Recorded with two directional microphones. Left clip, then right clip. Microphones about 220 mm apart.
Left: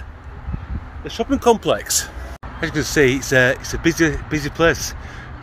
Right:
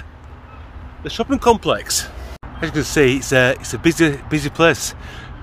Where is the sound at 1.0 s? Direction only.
15° right (ahead or behind).